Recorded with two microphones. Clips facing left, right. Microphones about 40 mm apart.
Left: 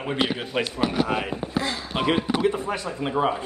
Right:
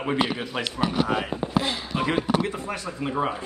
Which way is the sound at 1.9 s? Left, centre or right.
Left.